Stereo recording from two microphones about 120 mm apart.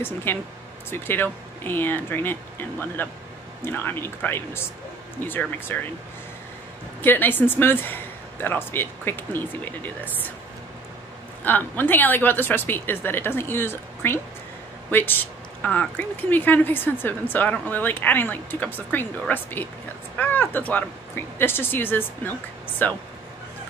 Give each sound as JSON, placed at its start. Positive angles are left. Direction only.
{"t": 0.0, "sound": "a man's voice", "side_deg": 20}
{"t": 7.0, "sound": "speech", "side_deg": 15}
{"t": 11.4, "sound": "speech", "side_deg": 15}